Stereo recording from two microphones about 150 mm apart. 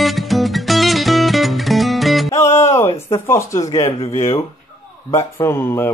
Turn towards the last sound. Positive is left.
turn(degrees=15)  # may be behind; listen again after turning